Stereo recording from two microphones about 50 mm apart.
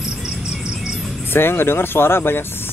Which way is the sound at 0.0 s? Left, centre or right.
Centre.